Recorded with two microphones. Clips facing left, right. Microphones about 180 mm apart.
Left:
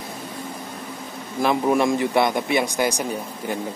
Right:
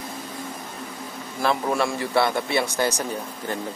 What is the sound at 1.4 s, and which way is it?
A man's voice, 15° left (ahead or behind).